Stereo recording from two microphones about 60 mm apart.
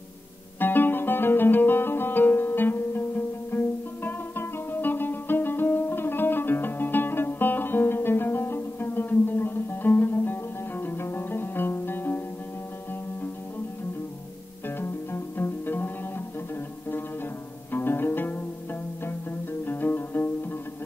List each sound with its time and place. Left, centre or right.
0.6 s music: left
14.8 s music: left
17.7 s music: left
19.6 s music: left